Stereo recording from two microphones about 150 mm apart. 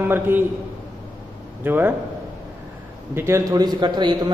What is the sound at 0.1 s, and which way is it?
Speech, 15° right (ahead or behind).